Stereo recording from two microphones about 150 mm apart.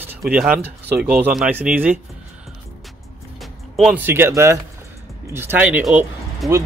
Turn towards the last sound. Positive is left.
turn(degrees=0)  # may be behind; listen again after turning